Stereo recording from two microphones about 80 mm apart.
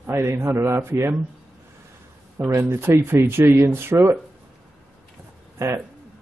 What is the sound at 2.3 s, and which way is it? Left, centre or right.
Speech, right.